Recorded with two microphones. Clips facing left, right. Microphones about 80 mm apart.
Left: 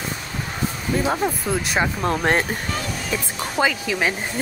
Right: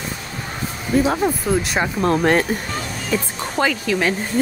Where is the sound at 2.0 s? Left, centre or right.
Left.